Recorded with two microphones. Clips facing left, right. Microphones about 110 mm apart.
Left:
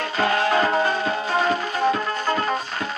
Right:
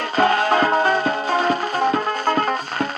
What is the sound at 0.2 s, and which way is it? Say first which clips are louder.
Music: right 3 dB; 40° right (ahead or behind).